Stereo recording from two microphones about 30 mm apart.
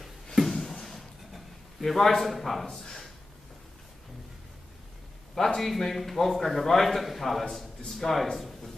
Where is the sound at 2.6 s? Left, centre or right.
Centre.